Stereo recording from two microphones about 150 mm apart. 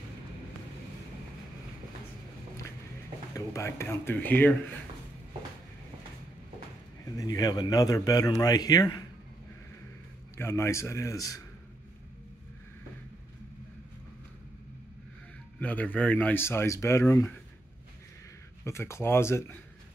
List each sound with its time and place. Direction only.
3.3 s speech: 20° left (ahead or behind)
7.2 s speech: 25° left (ahead or behind)
10.3 s speech: 15° left (ahead or behind)
15.6 s speech: 10° left (ahead or behind)
18.6 s speech: 20° left (ahead or behind)